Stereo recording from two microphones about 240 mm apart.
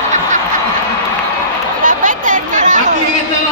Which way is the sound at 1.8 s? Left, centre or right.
Right.